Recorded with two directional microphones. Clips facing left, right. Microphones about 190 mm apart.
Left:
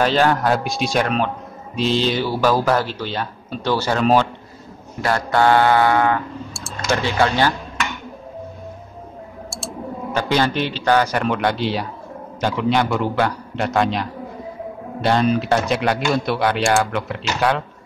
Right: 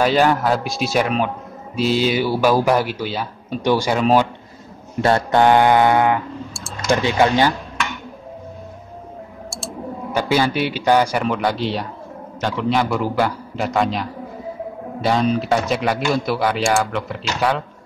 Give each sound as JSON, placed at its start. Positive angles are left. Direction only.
{"t": 0.0, "sound": "speech", "side_deg": -10}
{"t": 5.0, "sound": "a sound", "side_deg": -20}
{"t": 6.9, "sound": "speech", "side_deg": -15}
{"t": 10.2, "sound": "speech", "side_deg": -10}